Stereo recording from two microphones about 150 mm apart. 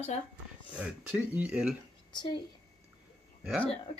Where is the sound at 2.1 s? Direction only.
30° left (ahead or behind).